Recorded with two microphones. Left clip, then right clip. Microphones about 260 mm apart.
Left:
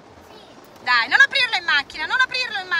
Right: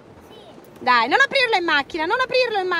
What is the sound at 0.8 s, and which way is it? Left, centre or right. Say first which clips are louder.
Speech: left 1 dB; centre.